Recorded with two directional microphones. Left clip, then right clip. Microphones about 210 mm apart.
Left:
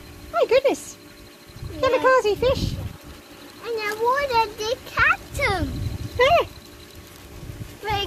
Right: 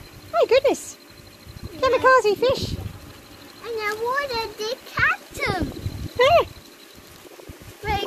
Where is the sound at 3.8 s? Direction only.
20° left (ahead or behind).